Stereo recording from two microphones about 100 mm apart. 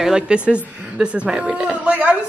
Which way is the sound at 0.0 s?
10° right (ahead or behind).